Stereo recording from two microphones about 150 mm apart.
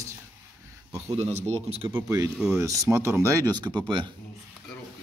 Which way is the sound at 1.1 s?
40° right (ahead or behind).